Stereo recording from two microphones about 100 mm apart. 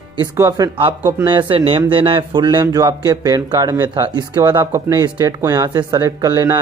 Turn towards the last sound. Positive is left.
turn(degrees=-30)  # may be behind; listen again after turning